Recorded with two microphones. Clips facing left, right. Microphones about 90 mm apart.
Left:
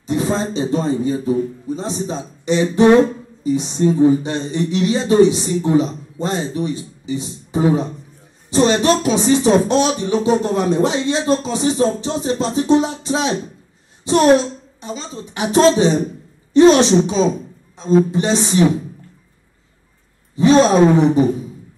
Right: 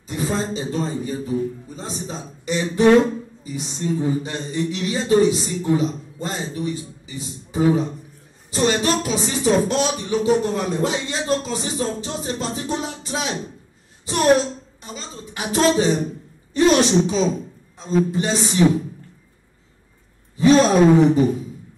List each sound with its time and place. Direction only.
0.0 s speech: 20° left (ahead or behind)
20.3 s speech: 20° left (ahead or behind)